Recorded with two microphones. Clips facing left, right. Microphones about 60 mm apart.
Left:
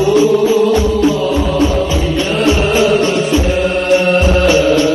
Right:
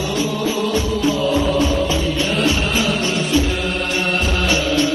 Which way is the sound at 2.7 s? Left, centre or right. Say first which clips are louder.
Left 8 dB; left.